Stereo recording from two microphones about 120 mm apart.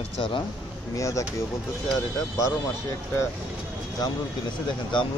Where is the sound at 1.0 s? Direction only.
25° left (ahead or behind).